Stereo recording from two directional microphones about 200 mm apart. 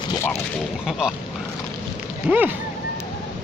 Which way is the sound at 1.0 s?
5° right (ahead or behind).